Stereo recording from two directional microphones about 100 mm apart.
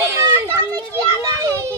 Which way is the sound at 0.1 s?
30° right (ahead or behind).